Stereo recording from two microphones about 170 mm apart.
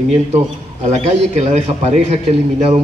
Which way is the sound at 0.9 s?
40° right (ahead or behind).